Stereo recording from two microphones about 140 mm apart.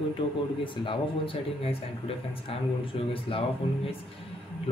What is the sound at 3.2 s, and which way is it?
Speech, 40° left (ahead or behind).